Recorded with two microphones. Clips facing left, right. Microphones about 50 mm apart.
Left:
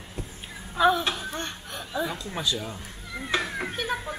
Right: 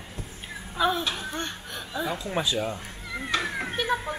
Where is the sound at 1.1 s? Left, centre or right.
Centre.